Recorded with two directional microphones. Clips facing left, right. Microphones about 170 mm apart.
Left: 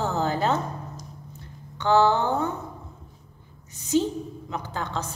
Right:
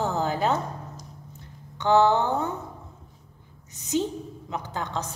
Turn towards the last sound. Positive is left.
turn(degrees=-15)  # may be behind; listen again after turning